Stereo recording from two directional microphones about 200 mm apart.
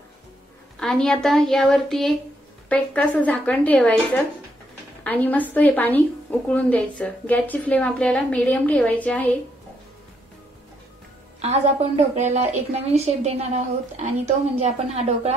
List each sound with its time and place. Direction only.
0.7 s a woman's voice: 5° left (ahead or behind)
12.2 s a woman's voice: 35° right (ahead or behind)